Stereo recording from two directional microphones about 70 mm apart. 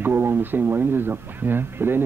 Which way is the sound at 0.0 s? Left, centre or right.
Right.